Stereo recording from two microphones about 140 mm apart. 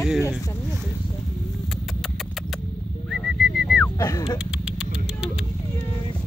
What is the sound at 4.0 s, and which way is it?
Speech, 25° left (ahead or behind).